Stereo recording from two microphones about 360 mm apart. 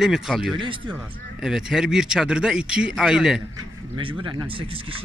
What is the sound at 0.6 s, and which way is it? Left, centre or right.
Speech, centre.